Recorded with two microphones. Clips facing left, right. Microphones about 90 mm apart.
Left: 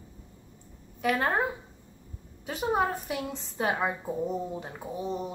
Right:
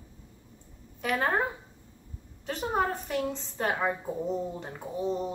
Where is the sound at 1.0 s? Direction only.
Centre (ahead or behind).